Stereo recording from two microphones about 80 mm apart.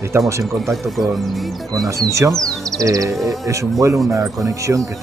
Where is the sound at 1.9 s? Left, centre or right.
Right.